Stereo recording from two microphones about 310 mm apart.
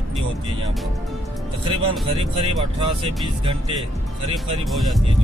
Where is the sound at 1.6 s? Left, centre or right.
Centre.